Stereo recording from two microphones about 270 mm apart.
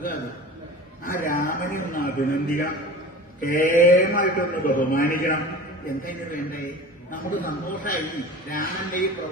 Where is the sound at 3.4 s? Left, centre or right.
Left.